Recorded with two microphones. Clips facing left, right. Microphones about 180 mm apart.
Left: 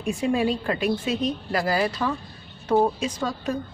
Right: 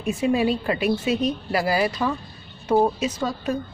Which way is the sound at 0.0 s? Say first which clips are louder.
Right 2 dB; 5° right (ahead or behind).